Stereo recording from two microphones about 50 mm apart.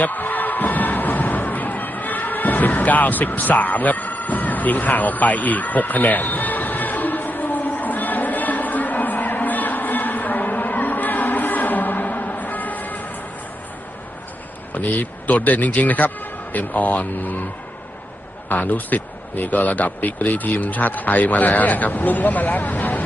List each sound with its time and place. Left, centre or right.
0.0 s music: left
14.7 s speech: left
18.5 s speech: left